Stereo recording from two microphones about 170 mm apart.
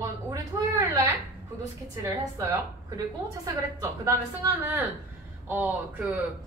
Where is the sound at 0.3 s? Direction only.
20° right (ahead or behind).